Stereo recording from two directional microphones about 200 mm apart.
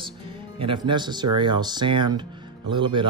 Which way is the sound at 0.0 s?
25° right (ahead or behind).